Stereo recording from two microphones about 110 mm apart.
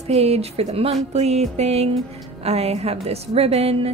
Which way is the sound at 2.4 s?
75° right (ahead or behind).